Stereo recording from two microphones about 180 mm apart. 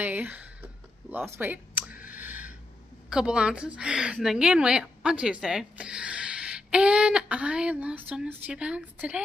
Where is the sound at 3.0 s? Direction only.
5° right (ahead or behind).